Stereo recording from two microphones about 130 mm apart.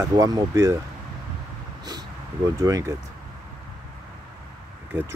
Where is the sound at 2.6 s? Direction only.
25° right (ahead or behind).